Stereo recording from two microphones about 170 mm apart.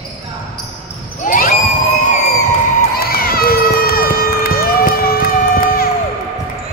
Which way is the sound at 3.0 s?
60° left (ahead or behind).